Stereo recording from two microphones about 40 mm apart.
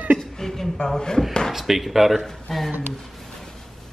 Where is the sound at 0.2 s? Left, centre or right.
Centre.